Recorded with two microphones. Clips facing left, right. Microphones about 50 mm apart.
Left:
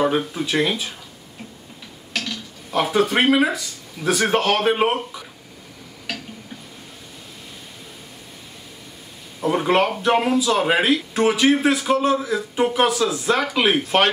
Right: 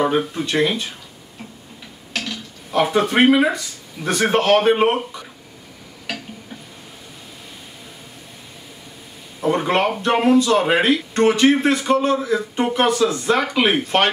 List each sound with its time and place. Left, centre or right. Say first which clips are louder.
0.0 s speech: right 1 dB; centre
2.1 s speech: right 1 dB; centre
6.1 s tick-tock: right 1 dB; centre
9.4 s speech: even; centre